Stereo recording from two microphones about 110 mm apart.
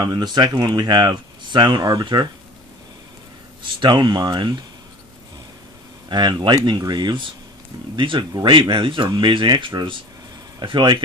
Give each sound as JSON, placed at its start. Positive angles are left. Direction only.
{"t": 0.0, "sound": "speech", "side_deg": -40}
{"t": 3.8, "sound": "speech", "side_deg": -40}
{"t": 6.0, "sound": "speech", "side_deg": -40}